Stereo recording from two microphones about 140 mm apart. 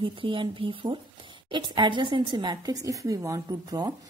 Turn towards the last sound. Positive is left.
turn(degrees=-25)  # may be behind; listen again after turning